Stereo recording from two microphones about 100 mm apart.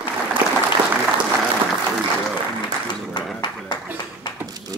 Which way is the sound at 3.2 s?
55° left (ahead or behind).